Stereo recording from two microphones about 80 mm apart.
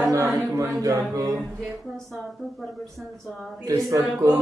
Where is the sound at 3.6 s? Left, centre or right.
Right.